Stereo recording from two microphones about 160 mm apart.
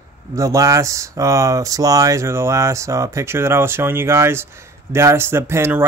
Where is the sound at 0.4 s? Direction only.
20° right (ahead or behind).